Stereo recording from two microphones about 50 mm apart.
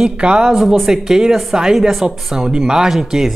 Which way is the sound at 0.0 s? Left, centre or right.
Centre.